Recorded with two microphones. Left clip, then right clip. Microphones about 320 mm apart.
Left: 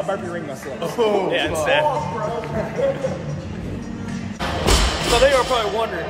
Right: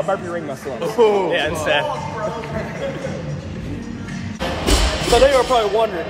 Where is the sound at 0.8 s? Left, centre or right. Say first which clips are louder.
Right 4 dB; centre.